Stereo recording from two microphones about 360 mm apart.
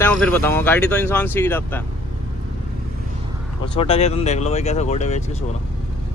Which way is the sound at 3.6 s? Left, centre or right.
Centre.